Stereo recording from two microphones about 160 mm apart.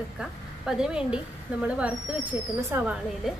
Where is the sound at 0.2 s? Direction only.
5° right (ahead or behind).